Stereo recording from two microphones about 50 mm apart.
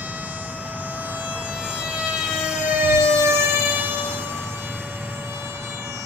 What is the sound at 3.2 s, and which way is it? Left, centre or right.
Siren, right.